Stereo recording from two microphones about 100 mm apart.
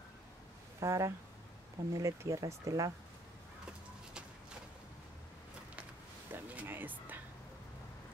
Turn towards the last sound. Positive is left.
turn(degrees=-20)  # may be behind; listen again after turning